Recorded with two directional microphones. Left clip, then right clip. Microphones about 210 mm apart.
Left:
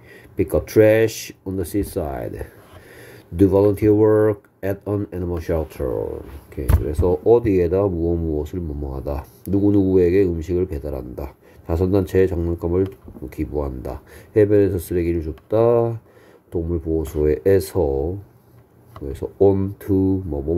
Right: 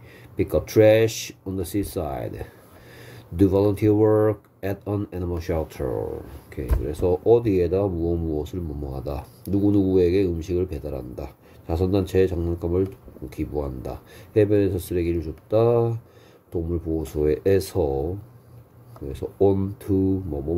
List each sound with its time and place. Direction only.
0.4 s speech: 15° left (ahead or behind)
19.1 s speech: 20° left (ahead or behind)